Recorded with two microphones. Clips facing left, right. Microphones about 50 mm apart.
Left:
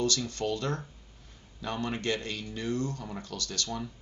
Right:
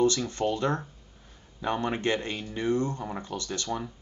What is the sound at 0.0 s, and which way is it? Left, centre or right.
Speech, right.